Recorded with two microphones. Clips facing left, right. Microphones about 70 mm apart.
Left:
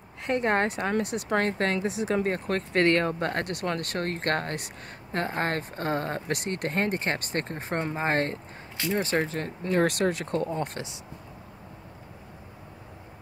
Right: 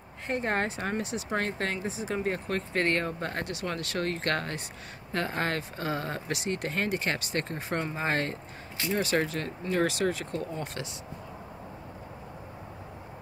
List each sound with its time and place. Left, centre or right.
0.3 s speech: left
5.6 s speech: left
9.0 s speech: left
9.6 s speech: left